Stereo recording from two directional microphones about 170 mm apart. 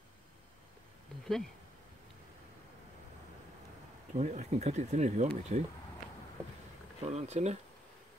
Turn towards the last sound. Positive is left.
turn(degrees=-40)  # may be behind; listen again after turning